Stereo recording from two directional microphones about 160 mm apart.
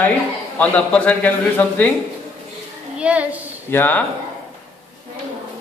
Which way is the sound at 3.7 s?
10° left (ahead or behind).